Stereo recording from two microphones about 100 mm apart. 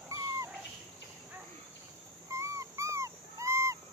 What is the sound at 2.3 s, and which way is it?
Dog, 30° right (ahead or behind).